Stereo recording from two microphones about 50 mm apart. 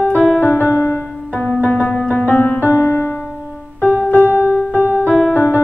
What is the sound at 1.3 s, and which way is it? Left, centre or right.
Music, left.